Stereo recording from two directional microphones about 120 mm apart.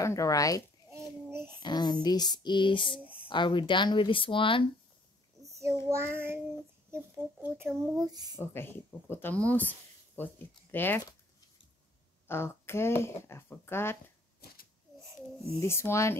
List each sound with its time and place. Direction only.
0.0 s speech: 25° left (ahead or behind)
0.8 s a sound: 20° right (ahead or behind)
1.6 s speech: 35° left (ahead or behind)
3.0 s a sound: 10° right (ahead or behind)
3.3 s speech: 40° left (ahead or behind)
5.4 s a sound: 25° right (ahead or behind)
5.9 s child singing: 20° right (ahead or behind)
7.9 s speech: 35° right (ahead or behind)
8.4 s speech: 20° left (ahead or behind)
12.3 s speech: 20° left (ahead or behind)
15.6 s speech: 20° left (ahead or behind)